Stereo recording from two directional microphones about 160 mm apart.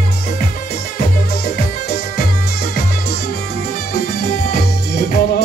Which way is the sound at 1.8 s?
75° left (ahead or behind).